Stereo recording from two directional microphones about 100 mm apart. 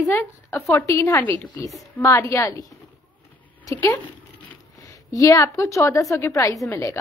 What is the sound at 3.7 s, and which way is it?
A woman's voice, 30° left (ahead or behind).